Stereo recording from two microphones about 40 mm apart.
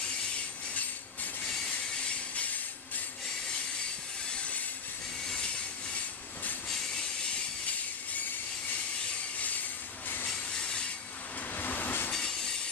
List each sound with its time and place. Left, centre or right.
2.3 s a sound: left
4.4 s train: left
10.2 s train: centre
11.5 s train: left
12.1 s train: centre